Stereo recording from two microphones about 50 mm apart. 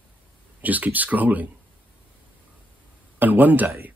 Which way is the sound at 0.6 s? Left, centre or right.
Right.